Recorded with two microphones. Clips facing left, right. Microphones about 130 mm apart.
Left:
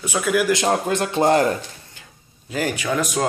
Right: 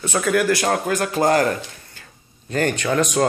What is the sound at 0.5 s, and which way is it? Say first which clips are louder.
Speech: even; 20° left (ahead or behind).